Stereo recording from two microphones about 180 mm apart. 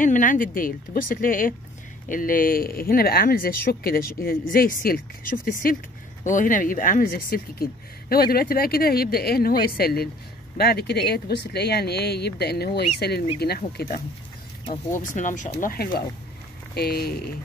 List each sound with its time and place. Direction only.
0.0 s speech: 45° left (ahead or behind)
13.7 s speech: 50° left (ahead or behind)
15.5 s speech: 55° left (ahead or behind)